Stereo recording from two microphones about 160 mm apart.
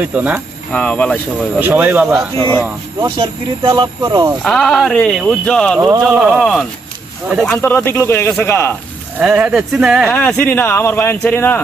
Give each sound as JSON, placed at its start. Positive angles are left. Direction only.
{"t": 0.0, "sound": "speech", "side_deg": -10}
{"t": 0.7, "sound": "speech", "side_deg": 5}
{"t": 1.6, "sound": "speech", "side_deg": -10}
{"t": 3.0, "sound": "speech", "side_deg": -30}
{"t": 4.4, "sound": "speech", "side_deg": 5}
{"t": 9.2, "sound": "speech", "side_deg": -5}
{"t": 10.1, "sound": "speech", "side_deg": 10}